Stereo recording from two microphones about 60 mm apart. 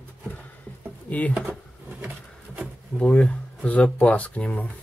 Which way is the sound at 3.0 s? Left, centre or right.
Centre.